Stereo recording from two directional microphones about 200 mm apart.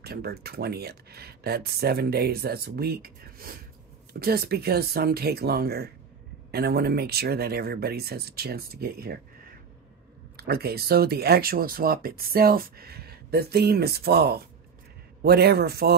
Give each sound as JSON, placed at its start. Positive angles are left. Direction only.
{"t": 0.0, "sound": "speech", "side_deg": -50}